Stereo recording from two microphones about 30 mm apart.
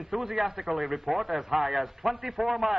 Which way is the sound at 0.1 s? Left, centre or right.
Centre.